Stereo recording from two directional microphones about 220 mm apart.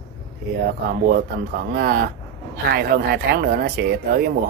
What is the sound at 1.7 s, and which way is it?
Speech, 45° right (ahead or behind).